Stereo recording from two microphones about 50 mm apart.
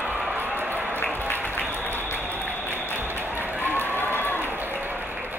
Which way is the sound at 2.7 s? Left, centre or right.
Left.